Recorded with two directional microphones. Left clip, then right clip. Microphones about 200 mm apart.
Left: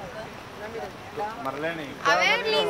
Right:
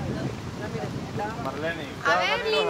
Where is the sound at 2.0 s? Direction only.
50° left (ahead or behind).